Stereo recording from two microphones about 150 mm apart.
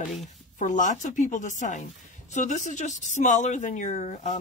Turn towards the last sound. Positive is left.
turn(degrees=50)  # may be behind; listen again after turning